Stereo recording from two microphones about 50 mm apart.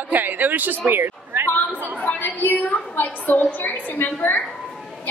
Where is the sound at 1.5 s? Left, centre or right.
Left.